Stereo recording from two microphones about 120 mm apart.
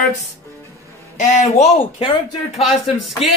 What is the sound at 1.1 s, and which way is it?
Speech, 75° left (ahead or behind).